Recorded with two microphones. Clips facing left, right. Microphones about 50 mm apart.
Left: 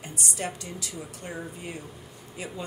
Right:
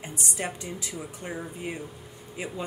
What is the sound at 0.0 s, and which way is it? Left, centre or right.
Speech, centre.